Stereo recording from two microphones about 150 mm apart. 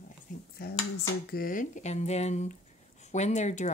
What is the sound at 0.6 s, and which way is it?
Speech, 90° left.